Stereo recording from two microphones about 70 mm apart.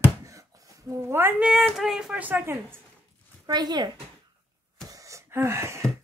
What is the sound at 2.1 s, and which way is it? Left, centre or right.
Speech, right.